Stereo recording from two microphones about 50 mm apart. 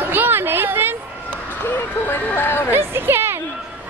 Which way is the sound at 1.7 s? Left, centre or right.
Left.